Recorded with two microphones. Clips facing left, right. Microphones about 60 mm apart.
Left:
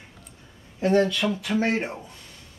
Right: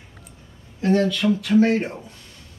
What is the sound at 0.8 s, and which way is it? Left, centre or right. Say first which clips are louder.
Speech: right 1 dB; centre.